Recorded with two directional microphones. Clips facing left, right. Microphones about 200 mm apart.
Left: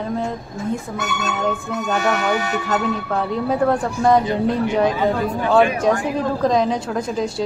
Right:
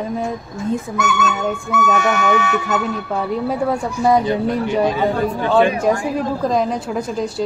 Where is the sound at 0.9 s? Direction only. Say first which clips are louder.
Right 4 dB; 35° left (ahead or behind).